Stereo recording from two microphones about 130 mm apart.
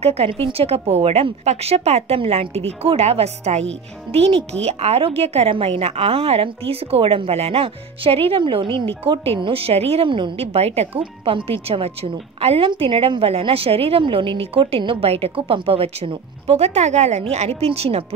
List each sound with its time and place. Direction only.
0.0 s a woman's voice: 50° right (ahead or behind)
11.0 s a woman's voice: 40° right (ahead or behind)